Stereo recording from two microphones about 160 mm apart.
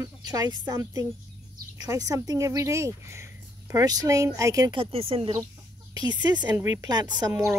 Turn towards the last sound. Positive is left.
turn(degrees=-20)  # may be behind; listen again after turning